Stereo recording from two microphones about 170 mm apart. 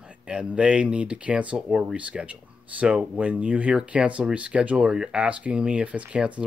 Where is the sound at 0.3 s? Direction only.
5° right (ahead or behind).